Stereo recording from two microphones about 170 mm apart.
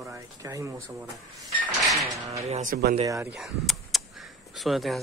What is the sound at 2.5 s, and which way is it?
Speech, 45° right (ahead or behind).